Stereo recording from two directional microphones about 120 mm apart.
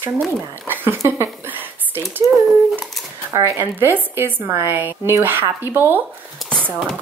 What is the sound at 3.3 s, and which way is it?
A woman's voice, 20° right (ahead or behind).